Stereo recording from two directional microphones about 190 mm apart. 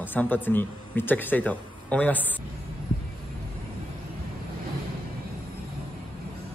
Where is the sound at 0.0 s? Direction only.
10° left (ahead or behind).